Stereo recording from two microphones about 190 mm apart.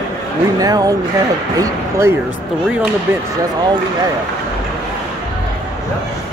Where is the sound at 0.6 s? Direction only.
20° right (ahead or behind).